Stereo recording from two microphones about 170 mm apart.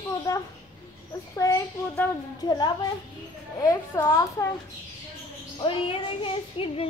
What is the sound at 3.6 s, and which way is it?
Speech, 20° left (ahead or behind).